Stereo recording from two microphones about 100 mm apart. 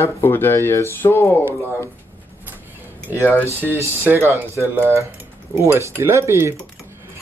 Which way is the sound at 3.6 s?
20° right (ahead or behind).